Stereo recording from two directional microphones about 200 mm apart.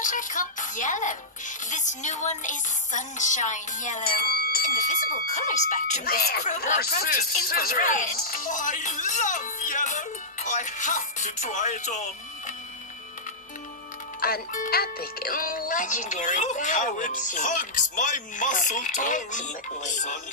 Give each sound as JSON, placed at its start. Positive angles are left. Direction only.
{"t": 0.0, "sound": "speech", "side_deg": 40}
{"t": 6.4, "sound": "speech", "side_deg": 35}
{"t": 6.8, "sound": "speech", "side_deg": 50}
{"t": 14.2, "sound": "speech", "side_deg": 45}